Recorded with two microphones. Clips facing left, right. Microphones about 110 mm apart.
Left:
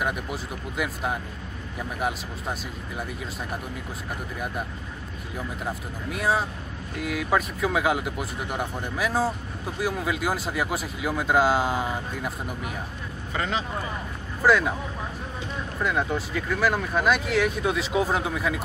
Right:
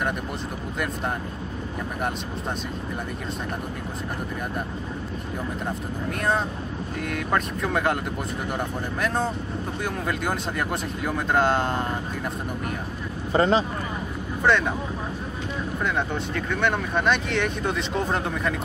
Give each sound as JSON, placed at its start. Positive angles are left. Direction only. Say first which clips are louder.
{"t": 6.0, "sound": "speech", "louder": "even", "side_deg": 5}
{"t": 13.3, "sound": "speech", "louder": "right 8 dB", "side_deg": -35}
{"t": 14.4, "sound": "speech", "louder": "left 1 dB", "side_deg": 5}
{"t": 15.8, "sound": "speech", "louder": "left 2 dB", "side_deg": 5}